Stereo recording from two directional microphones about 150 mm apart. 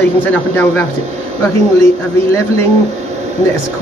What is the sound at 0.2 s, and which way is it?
Speech, 10° left (ahead or behind).